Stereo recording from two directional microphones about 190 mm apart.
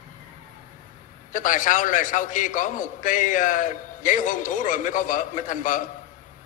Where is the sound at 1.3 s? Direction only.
45° left (ahead or behind).